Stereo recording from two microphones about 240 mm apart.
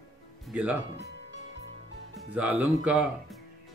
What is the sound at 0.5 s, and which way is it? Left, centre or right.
Speech, centre.